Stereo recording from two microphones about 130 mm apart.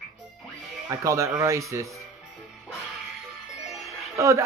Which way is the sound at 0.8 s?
20° right (ahead or behind).